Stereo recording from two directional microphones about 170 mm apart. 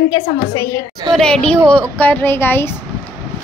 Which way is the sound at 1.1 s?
5° left (ahead or behind).